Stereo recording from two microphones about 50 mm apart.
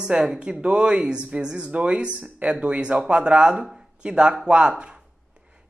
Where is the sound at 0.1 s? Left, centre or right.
Centre.